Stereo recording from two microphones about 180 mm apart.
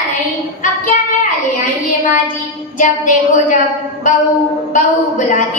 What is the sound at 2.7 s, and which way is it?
Speech, 45° left (ahead or behind).